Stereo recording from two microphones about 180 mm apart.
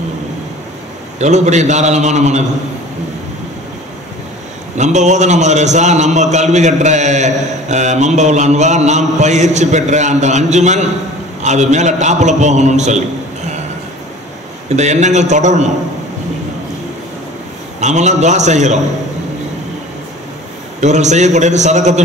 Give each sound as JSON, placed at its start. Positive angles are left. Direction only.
{"t": 1.2, "sound": "a man's voice", "side_deg": -40}
{"t": 4.7, "sound": "a man's voice", "side_deg": -40}
{"t": 14.8, "sound": "a man's voice", "side_deg": -40}
{"t": 17.7, "sound": "a man's voice", "side_deg": -40}
{"t": 20.8, "sound": "a man's voice", "side_deg": -40}